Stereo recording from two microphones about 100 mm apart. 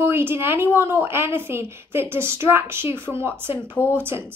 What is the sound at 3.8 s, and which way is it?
Speech, 25° left (ahead or behind).